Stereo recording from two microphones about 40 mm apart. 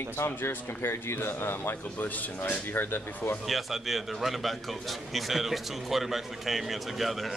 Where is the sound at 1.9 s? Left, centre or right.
Left.